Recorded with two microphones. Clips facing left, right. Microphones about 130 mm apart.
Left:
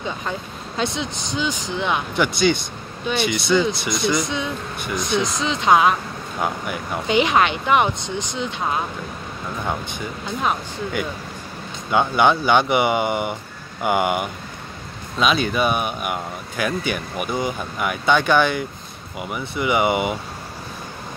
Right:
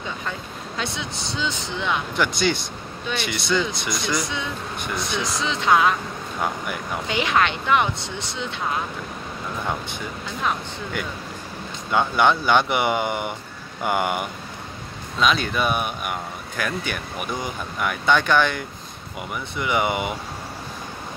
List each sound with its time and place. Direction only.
0.7 s speech: 20° left (ahead or behind)
2.1 s speech: centre (ahead or behind)
4.1 s speech: 20° left (ahead or behind)
7.1 s speech: 20° left (ahead or behind)
11.9 s speech: 5° left (ahead or behind)